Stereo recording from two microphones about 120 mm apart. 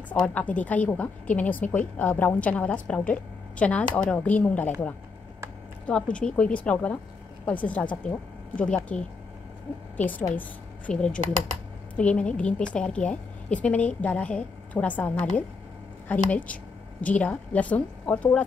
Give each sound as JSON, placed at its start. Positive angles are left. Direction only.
{"t": 0.1, "sound": "a woman's voice", "side_deg": 15}
{"t": 6.1, "sound": "a woman's voice", "side_deg": 10}